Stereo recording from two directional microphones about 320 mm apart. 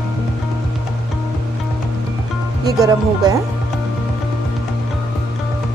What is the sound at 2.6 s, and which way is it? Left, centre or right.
Speech, centre.